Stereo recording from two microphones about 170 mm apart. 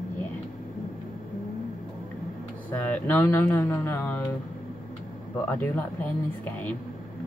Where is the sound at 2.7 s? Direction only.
10° left (ahead or behind).